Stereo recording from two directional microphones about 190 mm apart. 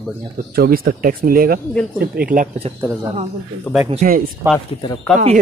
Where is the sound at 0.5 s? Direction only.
50° right (ahead or behind).